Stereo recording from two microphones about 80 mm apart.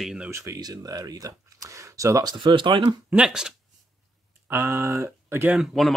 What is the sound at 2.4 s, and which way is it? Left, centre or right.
Speech, right.